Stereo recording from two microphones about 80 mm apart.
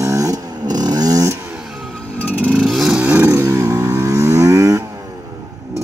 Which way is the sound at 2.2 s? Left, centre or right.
Centre.